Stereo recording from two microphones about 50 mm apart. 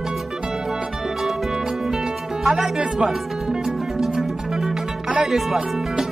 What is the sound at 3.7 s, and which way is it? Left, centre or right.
Music, centre.